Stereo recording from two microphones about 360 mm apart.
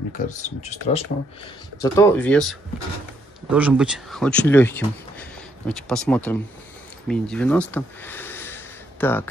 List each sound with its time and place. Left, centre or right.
0.2 s speech: centre
1.8 s speech: centre